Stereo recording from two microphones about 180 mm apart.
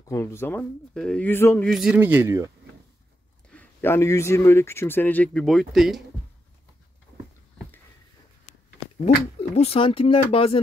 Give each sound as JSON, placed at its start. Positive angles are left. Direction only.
{"t": 0.1, "sound": "speech", "side_deg": 15}
{"t": 1.7, "sound": "speech", "side_deg": -5}
{"t": 3.4, "sound": "speech", "side_deg": 10}
{"t": 9.0, "sound": "speech", "side_deg": 35}